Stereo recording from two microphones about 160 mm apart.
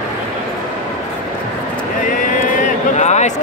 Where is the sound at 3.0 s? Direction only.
45° left (ahead or behind).